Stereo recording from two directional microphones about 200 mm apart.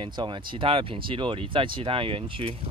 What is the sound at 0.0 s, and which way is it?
Speech, 25° right (ahead or behind).